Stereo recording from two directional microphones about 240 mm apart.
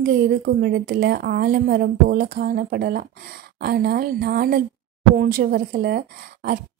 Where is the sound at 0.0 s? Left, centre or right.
Right.